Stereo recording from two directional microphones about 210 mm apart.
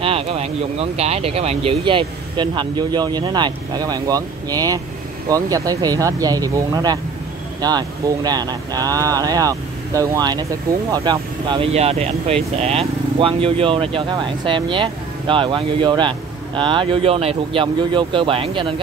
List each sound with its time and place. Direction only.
0.0 s speech: 25° right (ahead or behind)